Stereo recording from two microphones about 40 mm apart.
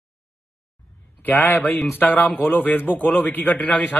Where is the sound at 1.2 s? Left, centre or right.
Left.